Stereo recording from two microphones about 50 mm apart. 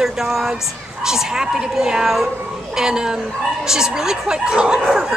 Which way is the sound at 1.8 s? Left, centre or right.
Centre.